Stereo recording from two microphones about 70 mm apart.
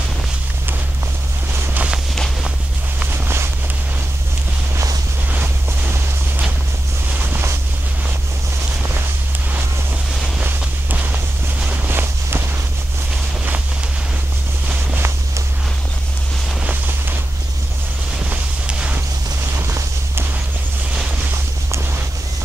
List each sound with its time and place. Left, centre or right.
1.5 s a sound: right
2.1 s walk: centre
3.1 s a sound: right
5.3 s boat: right
10.4 s walk: right
18.2 s walk: centre